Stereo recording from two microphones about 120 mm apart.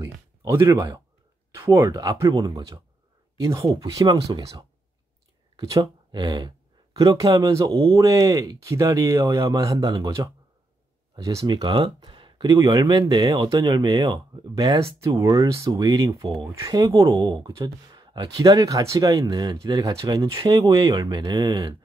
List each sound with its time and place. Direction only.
0.5 s speech: 25° right (ahead or behind)